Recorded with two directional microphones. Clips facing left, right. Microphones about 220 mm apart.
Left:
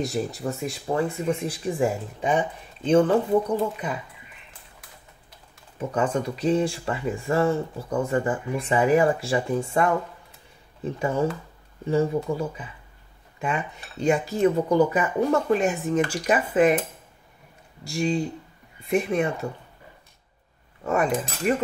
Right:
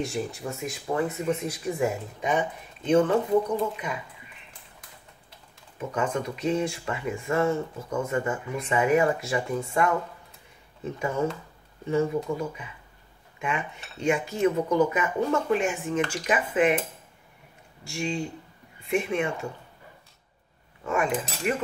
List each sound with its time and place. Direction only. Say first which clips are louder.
0.0 s speech: left 3 dB; 35° left (ahead or behind)
5.8 s speech: left 3 dB; 30° left (ahead or behind)
17.8 s speech: left 5 dB; 35° left (ahead or behind)
20.8 s speech: left 3 dB; 40° left (ahead or behind)